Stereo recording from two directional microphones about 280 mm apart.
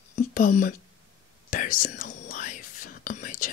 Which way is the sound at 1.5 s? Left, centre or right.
Left.